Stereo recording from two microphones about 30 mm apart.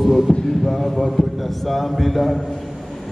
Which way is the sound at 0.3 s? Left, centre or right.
Left.